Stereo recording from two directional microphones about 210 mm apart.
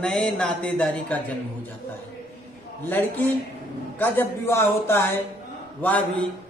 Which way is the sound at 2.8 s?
10° left (ahead or behind).